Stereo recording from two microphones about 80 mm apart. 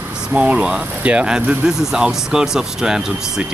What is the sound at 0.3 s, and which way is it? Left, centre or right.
Speech, centre.